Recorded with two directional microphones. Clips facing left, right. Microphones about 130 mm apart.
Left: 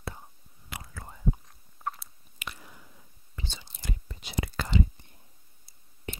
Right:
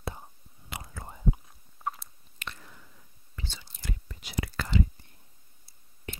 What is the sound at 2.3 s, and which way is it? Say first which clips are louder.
Chewing: even; 10° left (ahead or behind).